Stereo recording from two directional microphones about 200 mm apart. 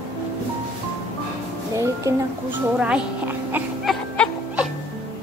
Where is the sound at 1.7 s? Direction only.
15° right (ahead or behind).